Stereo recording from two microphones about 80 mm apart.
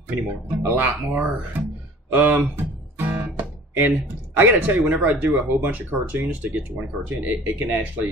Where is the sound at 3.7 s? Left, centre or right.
Right.